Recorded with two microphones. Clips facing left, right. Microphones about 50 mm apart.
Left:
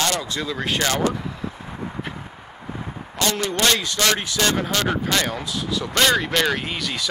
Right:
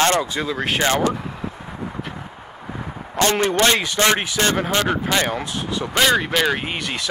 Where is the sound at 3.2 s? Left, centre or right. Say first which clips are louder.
Right 5 dB; right.